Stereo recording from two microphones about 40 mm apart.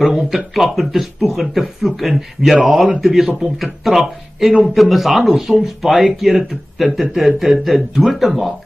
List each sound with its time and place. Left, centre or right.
0.0 s speech: centre